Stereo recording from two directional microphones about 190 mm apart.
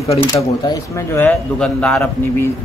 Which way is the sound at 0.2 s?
20° left (ahead or behind).